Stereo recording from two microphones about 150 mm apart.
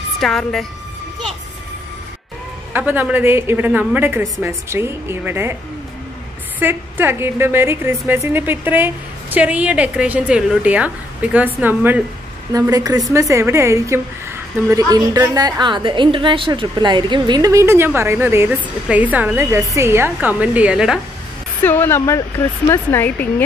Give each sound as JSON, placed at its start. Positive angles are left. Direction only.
{"t": 0.2, "sound": "a woman's voice", "side_deg": 0}
{"t": 2.7, "sound": "a woman's voice", "side_deg": -10}
{"t": 6.6, "sound": "a woman's voice", "side_deg": -15}
{"t": 12.5, "sound": "a woman's voice", "side_deg": -25}
{"t": 21.6, "sound": "speech", "side_deg": 15}